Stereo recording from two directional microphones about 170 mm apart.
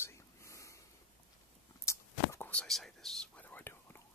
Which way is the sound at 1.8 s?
15° left (ahead or behind).